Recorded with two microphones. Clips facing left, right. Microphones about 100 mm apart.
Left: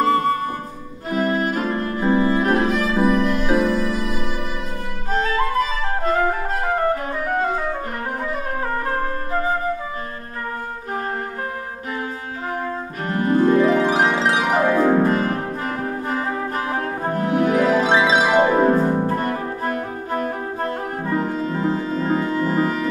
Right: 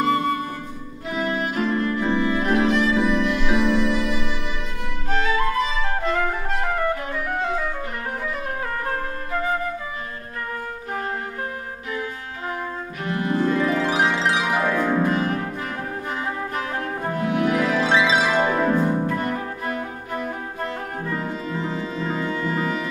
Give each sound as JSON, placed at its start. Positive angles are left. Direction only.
{"t": 0.0, "sound": "flute", "side_deg": 40}
{"t": 1.1, "sound": "music", "side_deg": 40}
{"t": 9.3, "sound": "flute", "side_deg": 35}
{"t": 13.0, "sound": "music", "side_deg": 40}
{"t": 13.6, "sound": "harp", "side_deg": 20}
{"t": 13.9, "sound": "harp", "side_deg": 45}
{"t": 14.5, "sound": "harp", "side_deg": 20}
{"t": 14.8, "sound": "music", "side_deg": 35}
{"t": 18.1, "sound": "music", "side_deg": 25}